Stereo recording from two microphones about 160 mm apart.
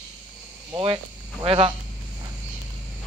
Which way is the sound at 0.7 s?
30° right (ahead or behind).